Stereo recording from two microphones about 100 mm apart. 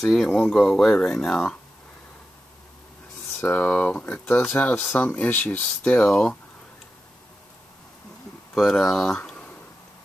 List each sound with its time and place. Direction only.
0.0 s speech: centre (ahead or behind)
3.3 s speech: 20° left (ahead or behind)
8.5 s speech: 5° left (ahead or behind)